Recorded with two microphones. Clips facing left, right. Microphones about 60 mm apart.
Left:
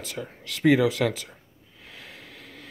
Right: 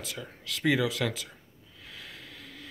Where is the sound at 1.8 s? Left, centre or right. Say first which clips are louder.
Left 1 dB; left.